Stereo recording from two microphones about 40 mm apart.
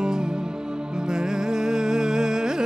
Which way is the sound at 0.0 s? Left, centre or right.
Centre.